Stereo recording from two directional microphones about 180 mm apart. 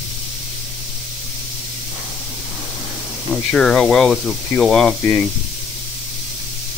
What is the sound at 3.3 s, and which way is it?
Speech, 5° left (ahead or behind).